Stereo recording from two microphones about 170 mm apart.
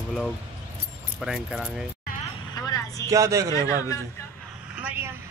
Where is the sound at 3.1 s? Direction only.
20° right (ahead or behind).